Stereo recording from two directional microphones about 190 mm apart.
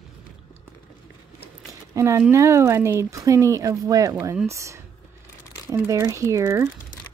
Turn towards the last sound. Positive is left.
turn(degrees=-15)  # may be behind; listen again after turning